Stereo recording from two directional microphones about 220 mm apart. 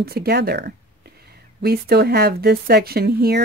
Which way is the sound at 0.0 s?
45° right (ahead or behind).